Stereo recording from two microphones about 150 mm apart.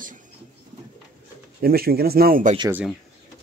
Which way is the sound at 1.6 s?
90° right.